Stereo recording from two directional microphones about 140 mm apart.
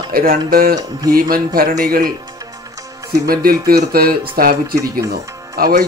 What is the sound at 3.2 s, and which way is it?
Speech, 90° right.